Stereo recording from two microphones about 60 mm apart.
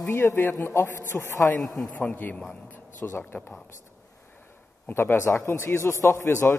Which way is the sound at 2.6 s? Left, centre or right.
Left.